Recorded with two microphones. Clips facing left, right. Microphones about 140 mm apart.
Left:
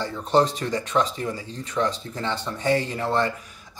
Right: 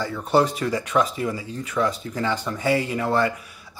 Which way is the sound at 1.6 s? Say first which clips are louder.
Right 1 dB; 10° right (ahead or behind).